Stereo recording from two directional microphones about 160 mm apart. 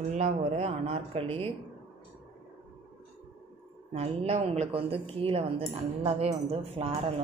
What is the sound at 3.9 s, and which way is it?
Speech, 40° right (ahead or behind).